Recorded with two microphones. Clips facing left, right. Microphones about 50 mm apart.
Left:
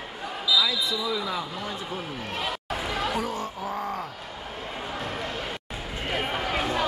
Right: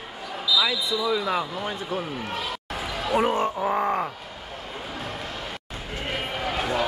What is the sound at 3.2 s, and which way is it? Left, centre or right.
Speech, right.